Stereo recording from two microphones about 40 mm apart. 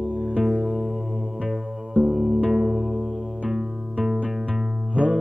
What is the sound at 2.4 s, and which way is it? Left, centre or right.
Music, centre.